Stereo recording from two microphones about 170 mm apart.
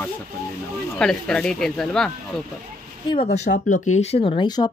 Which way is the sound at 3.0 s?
35° left (ahead or behind).